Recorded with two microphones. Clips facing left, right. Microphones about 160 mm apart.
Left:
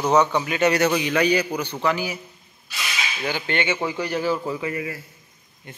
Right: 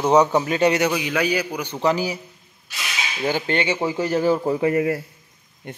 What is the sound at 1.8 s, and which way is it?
Speech, 35° right (ahead or behind).